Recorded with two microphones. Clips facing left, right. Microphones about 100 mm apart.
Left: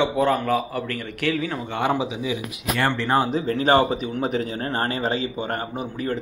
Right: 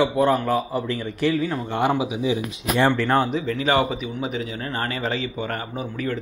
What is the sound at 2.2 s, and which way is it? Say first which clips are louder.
Speech: right 4 dB; 20° right (ahead or behind).